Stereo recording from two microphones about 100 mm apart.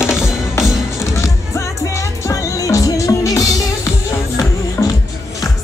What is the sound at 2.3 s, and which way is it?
Music, 35° left (ahead or behind).